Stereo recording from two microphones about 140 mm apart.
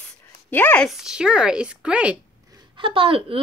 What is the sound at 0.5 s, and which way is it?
Speech, 15° left (ahead or behind).